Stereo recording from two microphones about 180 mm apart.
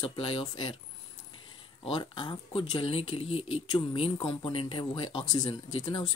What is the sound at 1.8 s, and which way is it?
Speech, 25° left (ahead or behind).